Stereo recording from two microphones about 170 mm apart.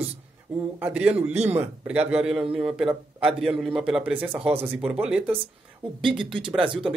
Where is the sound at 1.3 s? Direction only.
40° right (ahead or behind).